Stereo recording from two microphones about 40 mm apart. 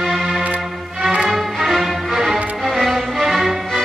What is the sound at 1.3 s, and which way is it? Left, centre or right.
Music, centre.